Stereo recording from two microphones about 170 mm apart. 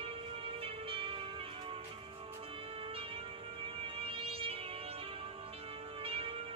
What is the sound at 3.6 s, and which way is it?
Music, 35° right (ahead or behind).